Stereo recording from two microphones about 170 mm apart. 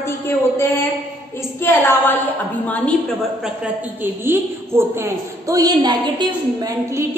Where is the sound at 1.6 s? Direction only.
10° left (ahead or behind).